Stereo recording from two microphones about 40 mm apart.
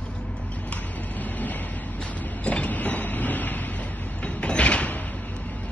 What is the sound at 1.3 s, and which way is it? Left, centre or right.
Vehicle, left.